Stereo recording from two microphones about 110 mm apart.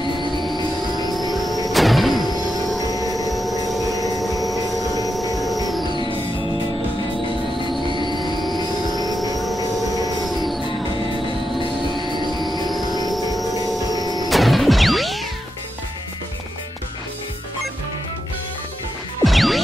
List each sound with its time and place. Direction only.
1.3 s power windows: centre (ahead or behind)
1.7 s a sound: centre (ahead or behind)
3.0 s a sound: 35° right (ahead or behind)
3.3 s a sound: centre (ahead or behind)
5.3 s music: centre (ahead or behind)
8.0 s music: 40° left (ahead or behind)
8.3 s music: 40° right (ahead or behind)
10.2 s music: centre (ahead or behind)
13.9 s music: 35° left (ahead or behind)
14.3 s music: centre (ahead or behind)
19.2 s music: centre (ahead or behind)